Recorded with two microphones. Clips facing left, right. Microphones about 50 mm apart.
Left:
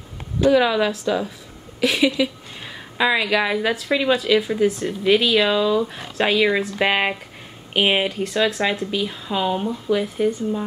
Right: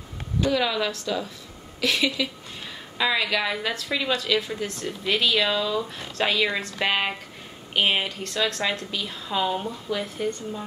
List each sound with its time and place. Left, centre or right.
0.5 s a woman's voice: centre